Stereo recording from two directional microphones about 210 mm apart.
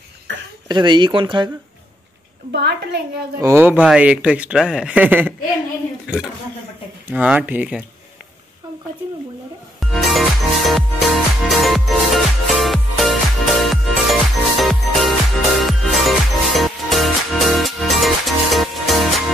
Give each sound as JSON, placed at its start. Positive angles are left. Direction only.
{"t": 0.3, "sound": "a sound", "side_deg": -60}
{"t": 0.7, "sound": "speech", "side_deg": -20}
{"t": 2.5, "sound": "a woman's voice", "side_deg": -50}
{"t": 3.3, "sound": "speech", "side_deg": -15}
{"t": 9.8, "sound": "music", "side_deg": 0}